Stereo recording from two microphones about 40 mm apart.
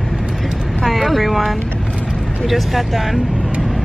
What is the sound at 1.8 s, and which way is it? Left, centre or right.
Vehicle, right.